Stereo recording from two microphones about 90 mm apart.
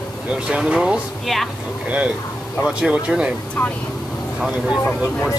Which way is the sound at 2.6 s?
10° right (ahead or behind).